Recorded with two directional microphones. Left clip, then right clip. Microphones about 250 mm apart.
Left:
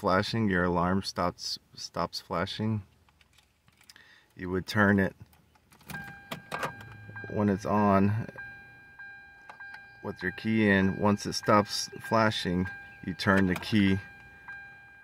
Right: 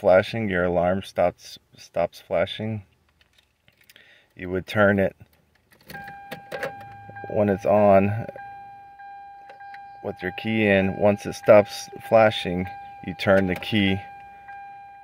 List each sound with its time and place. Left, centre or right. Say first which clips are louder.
0.0 s speech: right 9 dB; centre
3.8 s a sound: right 3 dB; centre
7.3 s speech: right 9 dB; centre
10.0 s speech: right 5 dB; centre